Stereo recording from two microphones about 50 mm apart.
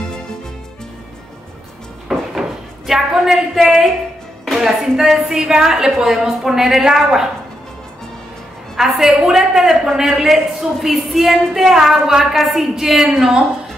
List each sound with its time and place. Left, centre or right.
2.1 s a sound: centre
2.9 s a woman's voice: centre
8.7 s a man's voice: centre